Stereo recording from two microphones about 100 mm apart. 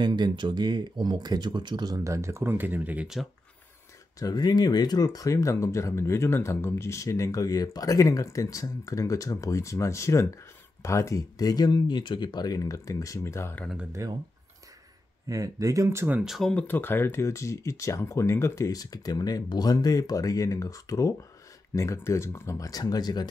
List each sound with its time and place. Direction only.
0.0 s speech: 50° right (ahead or behind)
2.0 s speech: 30° right (ahead or behind)
4.2 s speech: 40° left (ahead or behind); by 13.6 s 25° left (ahead or behind)
14.0 s speech: 35° right (ahead or behind)
15.2 s speech: 35° right (ahead or behind)
16.2 s speech: centre (ahead or behind)
16.5 s speech: 20° left (ahead or behind); by 23.2 s 40° left (ahead or behind)